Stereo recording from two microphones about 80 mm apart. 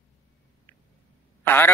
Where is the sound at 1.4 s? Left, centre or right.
Left.